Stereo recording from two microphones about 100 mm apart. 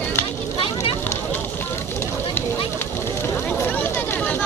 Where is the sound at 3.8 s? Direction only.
15° left (ahead or behind).